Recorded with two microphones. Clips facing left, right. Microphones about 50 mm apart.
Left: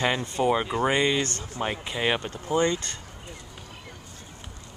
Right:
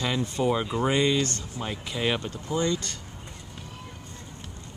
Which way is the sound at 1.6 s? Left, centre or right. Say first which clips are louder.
Left 2 dB; left.